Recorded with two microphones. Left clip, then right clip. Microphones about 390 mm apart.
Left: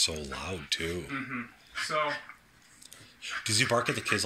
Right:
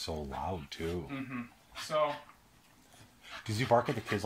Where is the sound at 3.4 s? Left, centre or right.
Centre.